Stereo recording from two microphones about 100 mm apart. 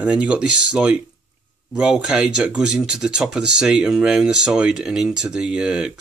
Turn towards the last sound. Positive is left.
turn(degrees=-10)  # may be behind; listen again after turning